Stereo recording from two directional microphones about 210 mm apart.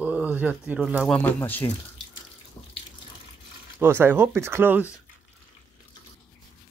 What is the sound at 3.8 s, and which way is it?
Speech, 10° right (ahead or behind).